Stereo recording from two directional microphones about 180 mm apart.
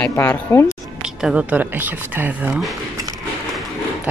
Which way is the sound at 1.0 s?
5° right (ahead or behind).